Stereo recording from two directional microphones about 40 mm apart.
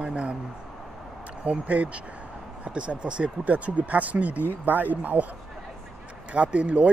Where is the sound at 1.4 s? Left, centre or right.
Right.